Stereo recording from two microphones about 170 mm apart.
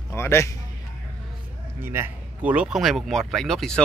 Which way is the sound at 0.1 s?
15° left (ahead or behind).